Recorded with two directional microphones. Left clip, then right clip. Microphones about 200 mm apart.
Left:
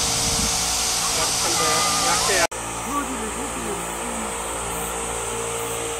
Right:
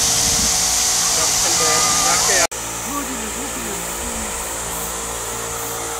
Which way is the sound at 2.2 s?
25° right (ahead or behind).